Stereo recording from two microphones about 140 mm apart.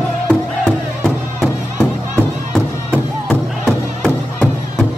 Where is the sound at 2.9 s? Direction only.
5° left (ahead or behind).